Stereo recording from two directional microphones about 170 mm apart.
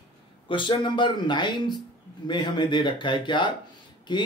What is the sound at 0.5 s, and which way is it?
A man's voice, 30° left (ahead or behind).